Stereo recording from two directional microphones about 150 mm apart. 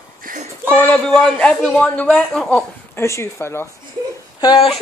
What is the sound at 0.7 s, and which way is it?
Speech, 10° left (ahead or behind).